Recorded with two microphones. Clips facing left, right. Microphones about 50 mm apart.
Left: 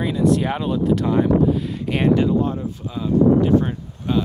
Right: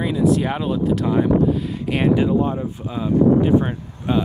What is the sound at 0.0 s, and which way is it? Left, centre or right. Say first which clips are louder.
Speech: even; centre.